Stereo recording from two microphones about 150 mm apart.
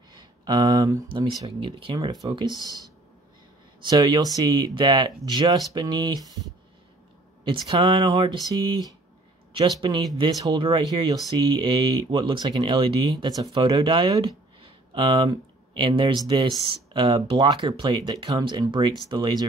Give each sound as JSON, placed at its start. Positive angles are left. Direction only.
{"t": 0.1, "sound": "speech", "side_deg": -25}
{"t": 3.8, "sound": "speech", "side_deg": -30}
{"t": 7.4, "sound": "speech", "side_deg": -30}
{"t": 9.5, "sound": "speech", "side_deg": -35}